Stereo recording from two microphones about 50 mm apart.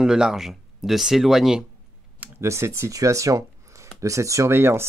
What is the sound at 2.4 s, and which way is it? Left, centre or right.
Speech, right.